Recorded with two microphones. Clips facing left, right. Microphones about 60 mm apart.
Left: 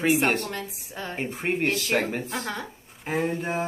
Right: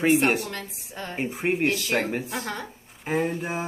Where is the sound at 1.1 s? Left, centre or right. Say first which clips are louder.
Right 2 dB; centre.